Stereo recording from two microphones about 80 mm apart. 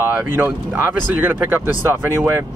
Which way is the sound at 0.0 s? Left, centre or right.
Right.